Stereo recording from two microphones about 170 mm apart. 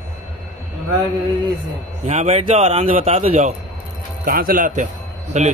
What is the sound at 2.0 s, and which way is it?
A man's voice, 45° right (ahead or behind).